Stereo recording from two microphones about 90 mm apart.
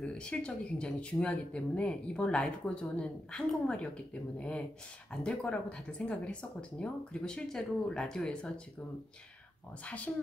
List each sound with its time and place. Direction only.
0.0 s speech: 10° left (ahead or behind)
9.8 s speech: 15° left (ahead or behind)